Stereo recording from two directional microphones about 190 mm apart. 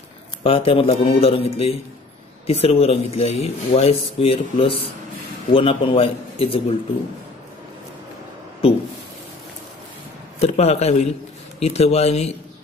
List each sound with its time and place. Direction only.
0.4 s a man's voice: 30° left (ahead or behind)
8.6 s speech: 30° left (ahead or behind)
10.4 s speech: 35° left (ahead or behind)